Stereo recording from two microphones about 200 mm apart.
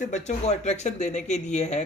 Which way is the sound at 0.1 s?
35° left (ahead or behind).